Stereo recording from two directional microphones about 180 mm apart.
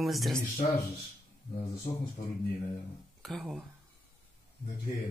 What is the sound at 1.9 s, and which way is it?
Speech, 40° left (ahead or behind).